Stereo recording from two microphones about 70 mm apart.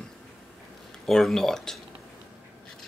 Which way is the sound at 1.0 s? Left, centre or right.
Centre.